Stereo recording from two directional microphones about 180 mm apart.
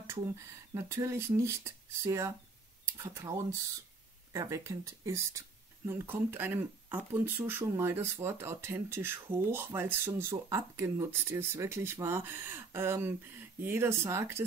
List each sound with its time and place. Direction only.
0.7 s speech: 15° right (ahead or behind)